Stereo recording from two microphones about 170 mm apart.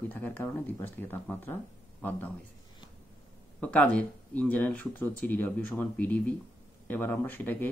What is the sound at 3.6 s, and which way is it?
Speech, 5° left (ahead or behind).